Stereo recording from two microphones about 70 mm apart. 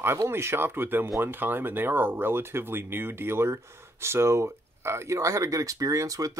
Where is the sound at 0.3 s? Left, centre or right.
Right.